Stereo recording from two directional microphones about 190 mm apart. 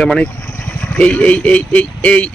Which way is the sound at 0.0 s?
5° left (ahead or behind).